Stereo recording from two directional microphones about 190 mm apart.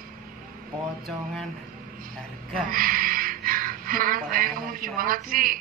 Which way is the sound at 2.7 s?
50° right (ahead or behind).